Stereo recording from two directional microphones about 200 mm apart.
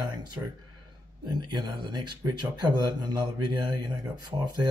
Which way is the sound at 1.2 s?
20° right (ahead or behind).